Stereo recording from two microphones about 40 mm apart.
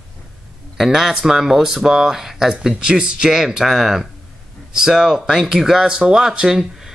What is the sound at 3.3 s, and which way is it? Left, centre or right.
Speech, centre.